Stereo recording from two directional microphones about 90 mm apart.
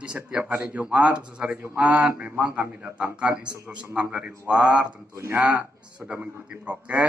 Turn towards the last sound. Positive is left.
turn(degrees=-15)  # may be behind; listen again after turning